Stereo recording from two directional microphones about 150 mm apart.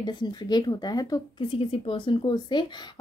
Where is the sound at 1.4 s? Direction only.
40° left (ahead or behind).